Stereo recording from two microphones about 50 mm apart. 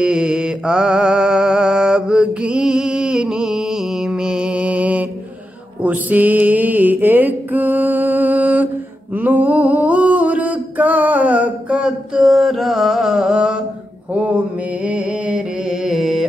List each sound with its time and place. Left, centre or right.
0.0 s mantra: centre; by 8.6 s right
9.1 s a sound: right
11.8 s mantra: centre
14.9 s music: right
15.7 s carnatic music: centre